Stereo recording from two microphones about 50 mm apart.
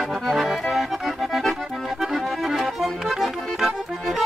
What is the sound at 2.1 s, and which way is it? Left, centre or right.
Music, centre.